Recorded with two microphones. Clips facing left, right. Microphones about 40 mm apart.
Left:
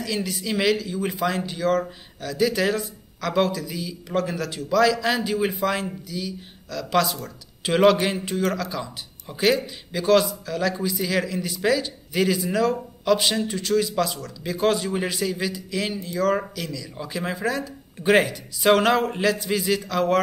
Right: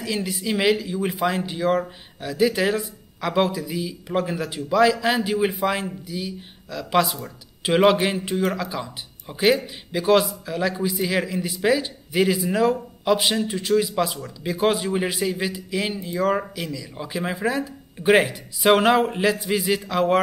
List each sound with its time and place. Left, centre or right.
0.0 s speech: centre